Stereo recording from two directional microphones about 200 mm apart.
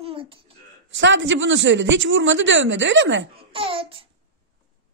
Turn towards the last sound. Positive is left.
turn(degrees=-25)  # may be behind; listen again after turning